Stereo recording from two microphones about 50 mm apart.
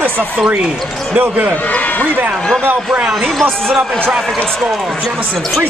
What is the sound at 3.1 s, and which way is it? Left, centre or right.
Speech, centre.